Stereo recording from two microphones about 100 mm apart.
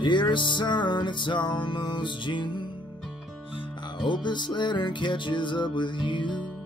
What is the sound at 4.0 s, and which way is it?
Music, 50° left (ahead or behind).